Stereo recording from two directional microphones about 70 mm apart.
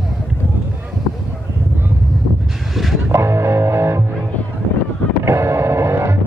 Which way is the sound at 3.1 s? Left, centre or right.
Right.